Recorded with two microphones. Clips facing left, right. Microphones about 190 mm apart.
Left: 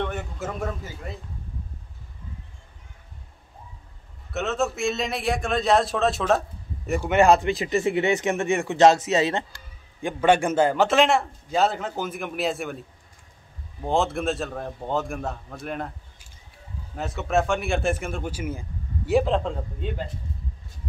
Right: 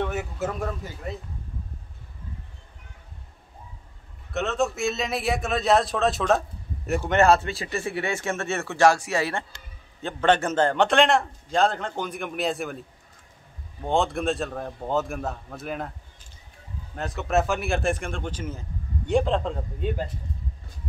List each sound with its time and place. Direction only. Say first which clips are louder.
0.0 s a man's voice: right 2 dB; 5° right (ahead or behind)
4.3 s a man's voice: even; centre (ahead or behind)
7.0 s a man's voice: left 2 dB; 15° left (ahead or behind)
13.8 s a man's voice: even; centre (ahead or behind)
16.9 s a man's voice: even; centre (ahead or behind)